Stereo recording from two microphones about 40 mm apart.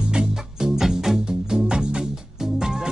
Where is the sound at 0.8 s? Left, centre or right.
Centre.